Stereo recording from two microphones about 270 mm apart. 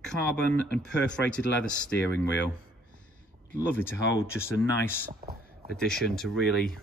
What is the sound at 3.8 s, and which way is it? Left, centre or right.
Speech, centre.